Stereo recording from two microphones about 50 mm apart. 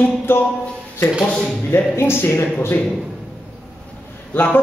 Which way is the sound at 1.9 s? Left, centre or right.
Left.